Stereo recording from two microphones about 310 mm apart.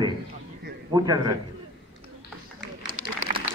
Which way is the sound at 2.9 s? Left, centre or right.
Right.